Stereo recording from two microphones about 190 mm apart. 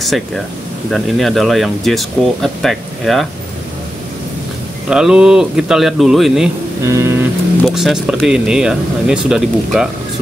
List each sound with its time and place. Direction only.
0.0 s speech: centre (ahead or behind)
4.8 s speech: 5° right (ahead or behind)
6.8 s vehicle: 15° right (ahead or behind)
7.6 s speech: centre (ahead or behind)